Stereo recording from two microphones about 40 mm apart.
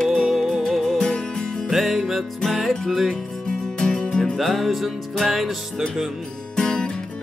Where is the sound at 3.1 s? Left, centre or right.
Centre.